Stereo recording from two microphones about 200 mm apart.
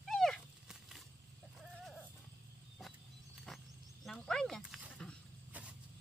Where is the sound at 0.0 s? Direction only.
Centre (ahead or behind).